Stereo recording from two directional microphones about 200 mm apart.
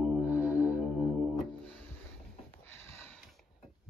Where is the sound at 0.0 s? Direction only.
5° right (ahead or behind).